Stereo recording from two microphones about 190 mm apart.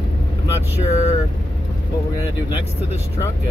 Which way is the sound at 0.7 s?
35° left (ahead or behind).